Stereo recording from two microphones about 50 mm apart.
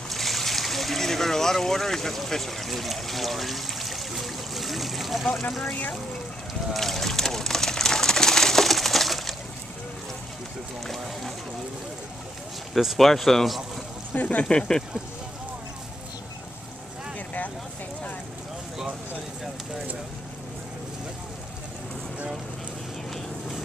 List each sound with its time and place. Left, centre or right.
0.1 s boat: centre
5.7 s speech: left
6.7 s pigeon: centre
10.9 s speech: centre
12.7 s speech: centre
14.1 s speech: left
14.4 s speech: centre